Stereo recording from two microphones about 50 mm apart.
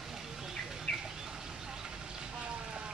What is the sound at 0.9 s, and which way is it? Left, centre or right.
Bird, left.